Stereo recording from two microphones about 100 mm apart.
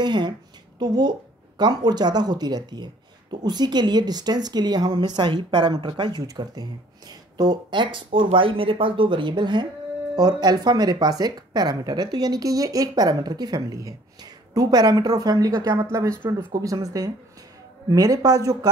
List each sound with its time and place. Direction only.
0.0 s a woman's voice: 45° right (ahead or behind)